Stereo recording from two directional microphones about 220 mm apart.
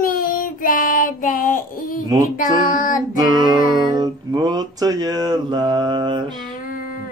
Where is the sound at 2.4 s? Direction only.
40° left (ahead or behind).